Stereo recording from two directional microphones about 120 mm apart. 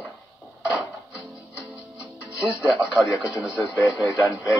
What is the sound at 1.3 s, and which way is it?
Music, 25° left (ahead or behind).